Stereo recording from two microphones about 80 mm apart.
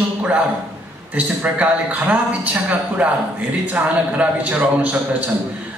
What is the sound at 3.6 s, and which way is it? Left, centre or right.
A man's voice, centre.